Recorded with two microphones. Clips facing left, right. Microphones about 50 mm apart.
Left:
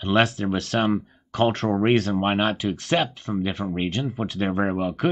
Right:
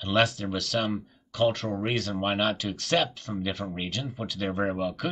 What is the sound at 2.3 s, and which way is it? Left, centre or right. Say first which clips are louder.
Speech: left 4 dB; left.